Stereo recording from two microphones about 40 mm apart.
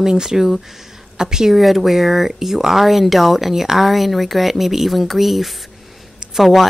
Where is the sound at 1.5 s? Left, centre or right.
Centre.